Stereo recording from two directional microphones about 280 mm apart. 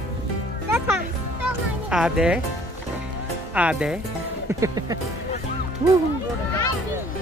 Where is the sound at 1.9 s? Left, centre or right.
Centre.